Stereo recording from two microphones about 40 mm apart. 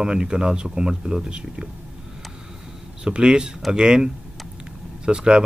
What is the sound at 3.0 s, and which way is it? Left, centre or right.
Speech, right.